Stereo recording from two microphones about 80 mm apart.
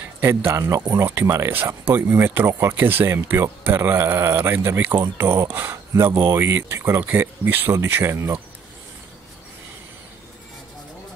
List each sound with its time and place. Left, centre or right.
0.2 s speech: right
4.4 s speech: right
5.0 s speech: right